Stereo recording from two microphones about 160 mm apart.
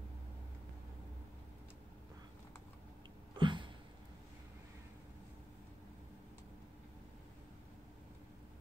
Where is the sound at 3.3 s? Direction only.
30° right (ahead or behind).